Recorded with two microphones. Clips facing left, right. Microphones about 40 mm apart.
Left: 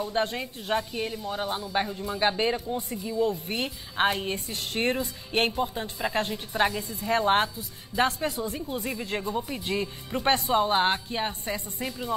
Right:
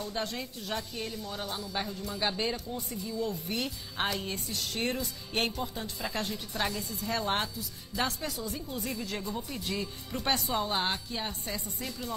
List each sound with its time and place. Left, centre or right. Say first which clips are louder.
0.0 s a woman's voice: left 7 dB; left